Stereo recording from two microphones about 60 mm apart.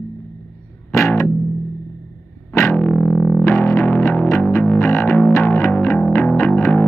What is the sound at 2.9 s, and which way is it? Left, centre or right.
Music, centre.